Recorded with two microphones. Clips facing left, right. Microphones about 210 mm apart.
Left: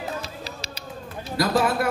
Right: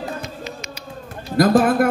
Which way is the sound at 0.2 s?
35° left (ahead or behind).